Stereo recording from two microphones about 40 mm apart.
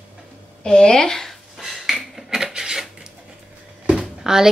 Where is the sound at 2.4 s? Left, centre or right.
Centre.